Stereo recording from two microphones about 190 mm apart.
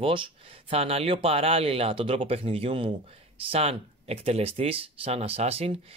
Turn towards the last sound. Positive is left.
turn(degrees=-30)  # may be behind; listen again after turning